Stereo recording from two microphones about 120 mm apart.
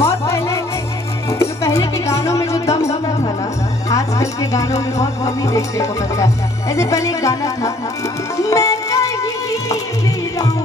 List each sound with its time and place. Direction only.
0.0 s music: 20° left (ahead or behind)
3.9 s a woman's voice: 25° left (ahead or behind)
8.4 s music: 25° left (ahead or behind)